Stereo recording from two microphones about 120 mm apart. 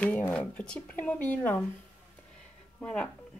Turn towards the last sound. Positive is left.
turn(degrees=10)  # may be behind; listen again after turning